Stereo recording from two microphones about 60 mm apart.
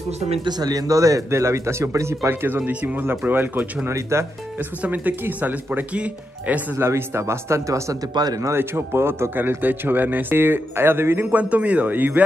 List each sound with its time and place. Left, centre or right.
0.6 s speech: right
2.4 s speech: right
3.3 s a man's voice: right
3.9 s speech: right
4.6 s speech: right
6.8 s speech: right
8.5 s a man's voice: right
11.3 s speech: right